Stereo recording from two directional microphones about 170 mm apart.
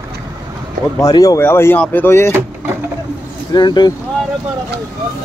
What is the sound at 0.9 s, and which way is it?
Speech, 20° left (ahead or behind).